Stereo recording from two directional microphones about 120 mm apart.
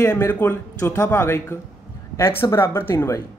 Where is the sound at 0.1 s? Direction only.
15° left (ahead or behind).